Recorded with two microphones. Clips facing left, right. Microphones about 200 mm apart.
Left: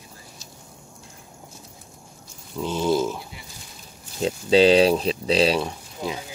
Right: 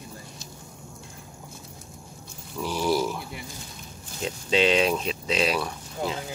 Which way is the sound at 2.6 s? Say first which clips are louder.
Left 3 dB; 20° left (ahead or behind).